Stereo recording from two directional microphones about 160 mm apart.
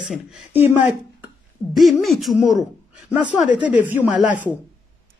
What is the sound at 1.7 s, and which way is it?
Speech, centre (ahead or behind).